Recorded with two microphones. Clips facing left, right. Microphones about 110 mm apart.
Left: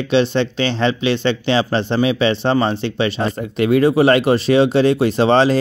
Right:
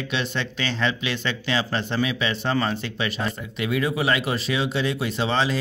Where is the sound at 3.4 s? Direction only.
50° left (ahead or behind).